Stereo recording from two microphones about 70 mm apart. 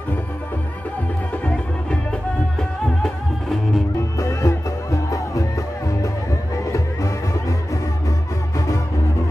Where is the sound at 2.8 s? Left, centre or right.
Centre.